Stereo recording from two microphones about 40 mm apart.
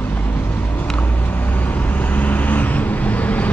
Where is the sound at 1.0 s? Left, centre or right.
Left.